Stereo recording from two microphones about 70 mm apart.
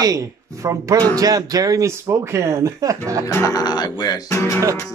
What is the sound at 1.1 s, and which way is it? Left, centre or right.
Speech, right.